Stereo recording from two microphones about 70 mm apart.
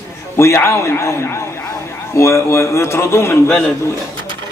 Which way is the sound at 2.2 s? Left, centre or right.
Left.